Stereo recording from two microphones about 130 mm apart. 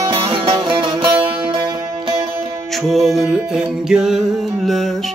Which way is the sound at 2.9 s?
Centre (ahead or behind).